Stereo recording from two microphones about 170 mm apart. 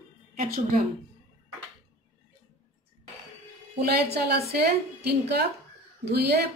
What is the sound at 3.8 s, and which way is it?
A woman's voice, 70° right (ahead or behind).